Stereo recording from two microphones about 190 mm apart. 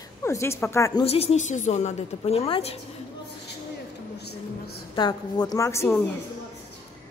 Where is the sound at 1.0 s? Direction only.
30° left (ahead or behind).